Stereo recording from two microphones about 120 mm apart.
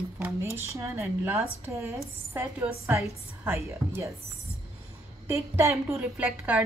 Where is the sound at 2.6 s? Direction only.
5° right (ahead or behind).